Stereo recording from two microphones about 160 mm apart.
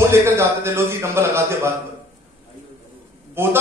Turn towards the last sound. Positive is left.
turn(degrees=-15)  # may be behind; listen again after turning